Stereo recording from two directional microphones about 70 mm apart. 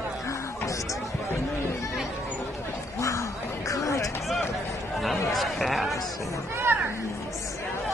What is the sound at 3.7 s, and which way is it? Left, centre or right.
Hubbub, left.